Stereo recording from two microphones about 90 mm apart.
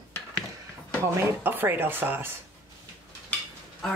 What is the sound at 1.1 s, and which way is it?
Speech, 30° right (ahead or behind).